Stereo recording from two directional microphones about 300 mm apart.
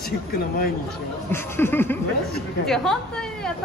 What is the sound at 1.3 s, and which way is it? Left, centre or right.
Chuckle, centre.